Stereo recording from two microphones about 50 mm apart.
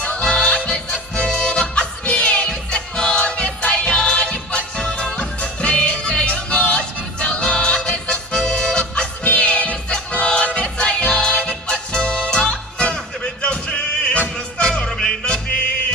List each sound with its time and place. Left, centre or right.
0.0 s music: left